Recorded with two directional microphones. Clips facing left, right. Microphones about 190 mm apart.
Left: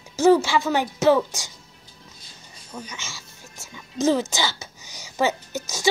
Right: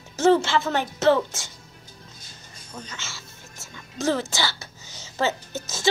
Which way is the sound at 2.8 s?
15° left (ahead or behind).